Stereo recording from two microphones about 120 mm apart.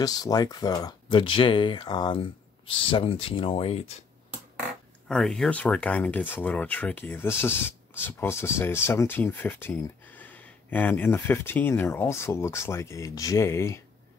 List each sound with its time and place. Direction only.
0.0 s speech: 30° left (ahead or behind)
1.2 s speech: 45° left (ahead or behind)
5.0 s speech: 5° left (ahead or behind); by 13.7 s 25° left (ahead or behind)